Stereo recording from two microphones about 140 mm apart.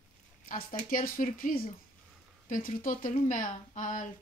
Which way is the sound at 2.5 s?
75° left (ahead or behind).